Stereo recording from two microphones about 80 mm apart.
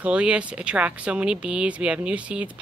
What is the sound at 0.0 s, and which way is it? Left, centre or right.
Speech, centre.